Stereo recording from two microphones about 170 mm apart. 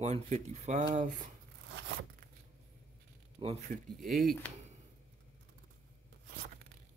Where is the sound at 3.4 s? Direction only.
25° right (ahead or behind).